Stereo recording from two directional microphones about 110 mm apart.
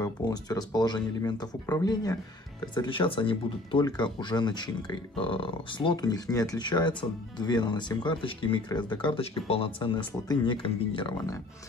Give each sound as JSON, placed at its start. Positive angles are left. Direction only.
{"t": 0.2, "sound": "speech", "side_deg": 35}
{"t": 5.1, "sound": "speech", "side_deg": 55}
{"t": 9.2, "sound": "speech", "side_deg": 60}